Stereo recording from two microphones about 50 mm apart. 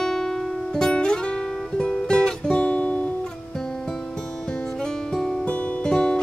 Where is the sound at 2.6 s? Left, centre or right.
Left.